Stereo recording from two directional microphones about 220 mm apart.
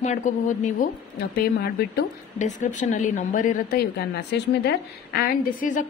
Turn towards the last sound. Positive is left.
turn(degrees=40)  # may be behind; listen again after turning